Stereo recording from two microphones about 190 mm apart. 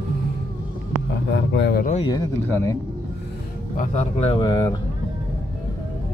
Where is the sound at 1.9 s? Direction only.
25° left (ahead or behind).